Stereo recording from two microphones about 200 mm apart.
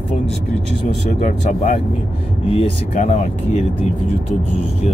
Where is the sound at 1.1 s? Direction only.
35° left (ahead or behind).